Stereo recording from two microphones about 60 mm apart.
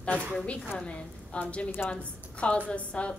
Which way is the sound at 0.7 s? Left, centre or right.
Centre.